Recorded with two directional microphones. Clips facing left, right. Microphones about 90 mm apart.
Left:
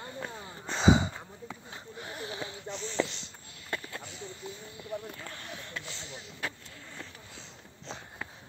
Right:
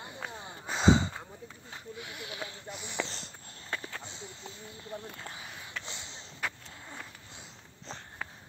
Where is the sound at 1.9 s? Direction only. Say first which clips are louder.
Left 4 dB; 35° left (ahead or behind).